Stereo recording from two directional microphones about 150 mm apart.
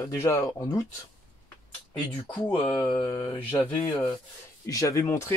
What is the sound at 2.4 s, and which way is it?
Speech, 20° left (ahead or behind).